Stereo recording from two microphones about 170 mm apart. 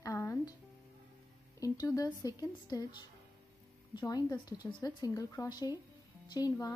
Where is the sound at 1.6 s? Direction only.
20° left (ahead or behind).